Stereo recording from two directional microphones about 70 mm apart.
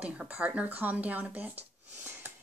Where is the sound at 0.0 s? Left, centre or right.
Centre.